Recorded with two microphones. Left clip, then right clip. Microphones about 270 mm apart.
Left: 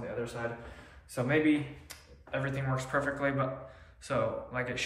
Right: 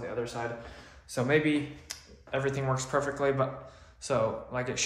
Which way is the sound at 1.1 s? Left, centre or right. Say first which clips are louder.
Right 2 dB; right.